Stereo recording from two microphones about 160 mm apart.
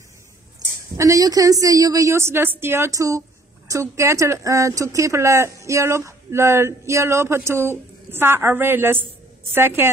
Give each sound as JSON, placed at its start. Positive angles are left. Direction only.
{"t": 0.9, "sound": "a woman's voice", "side_deg": -20}